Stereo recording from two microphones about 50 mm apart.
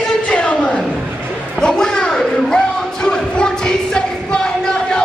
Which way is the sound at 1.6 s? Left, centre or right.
Centre.